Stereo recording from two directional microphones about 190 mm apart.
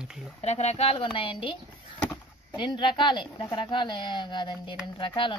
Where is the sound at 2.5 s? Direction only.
25° left (ahead or behind).